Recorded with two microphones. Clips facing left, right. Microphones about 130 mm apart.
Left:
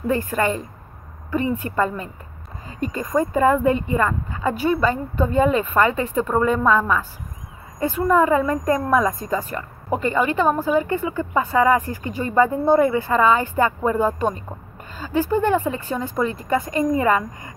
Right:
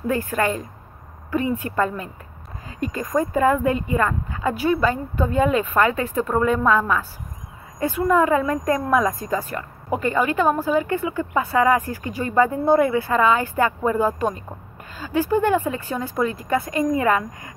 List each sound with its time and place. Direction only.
0.0 s speech: 5° right (ahead or behind)